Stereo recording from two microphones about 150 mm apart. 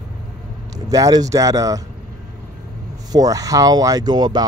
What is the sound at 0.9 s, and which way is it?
Speech, 25° right (ahead or behind).